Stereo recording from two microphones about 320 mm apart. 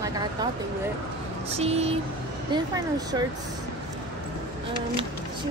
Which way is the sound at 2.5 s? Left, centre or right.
Centre.